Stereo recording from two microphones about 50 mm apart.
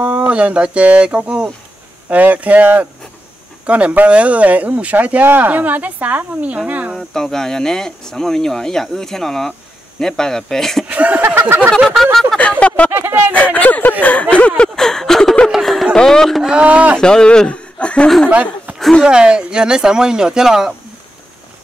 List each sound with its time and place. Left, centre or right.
0.0 s speech: right
2.0 s speech: right
5.2 s speech: right
7.0 s speech: centre
10.9 s speech: right
12.0 s speech: centre
12.4 s a sound: left
12.9 s speech: right
13.3 s speech: left
14.8 s a sound: centre
16.5 s speech: right
17.0 s speech: centre
18.3 s a sound: right
19.0 s speech: centre